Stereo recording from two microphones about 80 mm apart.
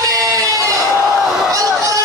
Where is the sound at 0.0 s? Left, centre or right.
Right.